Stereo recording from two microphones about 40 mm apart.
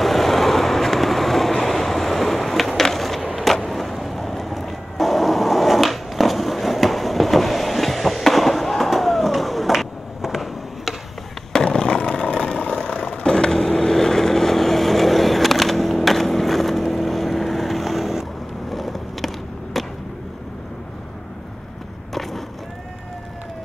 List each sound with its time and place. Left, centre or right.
0.0 s vehicle: centre
11.5 s a sound: centre
13.2 s vehicle: centre
18.7 s skateboard: centre